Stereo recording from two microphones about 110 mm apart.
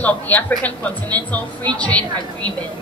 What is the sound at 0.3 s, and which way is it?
A woman's voice, 15° left (ahead or behind).